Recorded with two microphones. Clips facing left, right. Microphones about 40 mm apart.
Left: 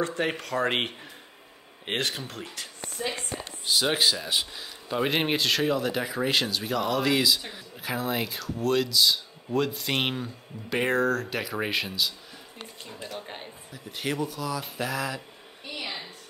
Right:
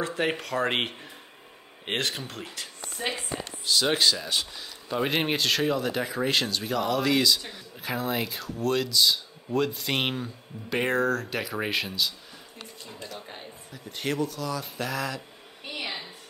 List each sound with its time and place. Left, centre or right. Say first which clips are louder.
0.0 s speech: even; centre
3.0 s a woman's voice: right 1 dB; right
3.4 s speech: even; centre
13.7 s speech: right 1 dB; centre
15.7 s a sound: right 1 dB; centre